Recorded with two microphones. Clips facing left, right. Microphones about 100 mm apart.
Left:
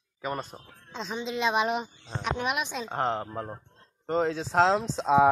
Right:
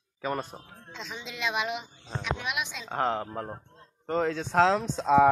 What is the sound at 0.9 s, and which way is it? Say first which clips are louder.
Speech: left 8 dB; 30° left (ahead or behind).